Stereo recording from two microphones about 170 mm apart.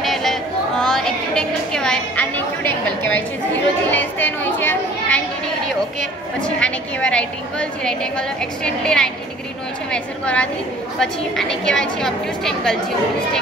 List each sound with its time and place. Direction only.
0.0 s a sound: centre (ahead or behind)
3.9 s a child's voice: 10° left (ahead or behind)
6.4 s a woman's voice: 5° left (ahead or behind)